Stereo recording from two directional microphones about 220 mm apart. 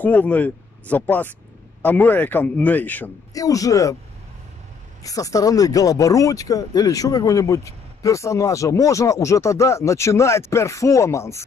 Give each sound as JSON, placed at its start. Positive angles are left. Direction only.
{"t": 0.0, "sound": "speech", "side_deg": 5}
{"t": 5.0, "sound": "speech", "side_deg": 15}